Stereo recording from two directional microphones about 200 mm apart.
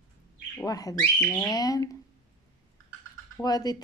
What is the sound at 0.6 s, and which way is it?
Speech, 15° left (ahead or behind).